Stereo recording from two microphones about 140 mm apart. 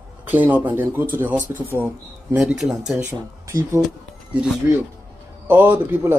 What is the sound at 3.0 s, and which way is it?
Speech, 20° right (ahead or behind).